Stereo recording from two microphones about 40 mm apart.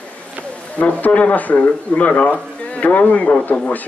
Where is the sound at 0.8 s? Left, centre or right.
Left.